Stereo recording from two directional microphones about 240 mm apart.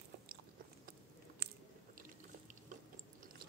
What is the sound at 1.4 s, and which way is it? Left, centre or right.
Biting, right.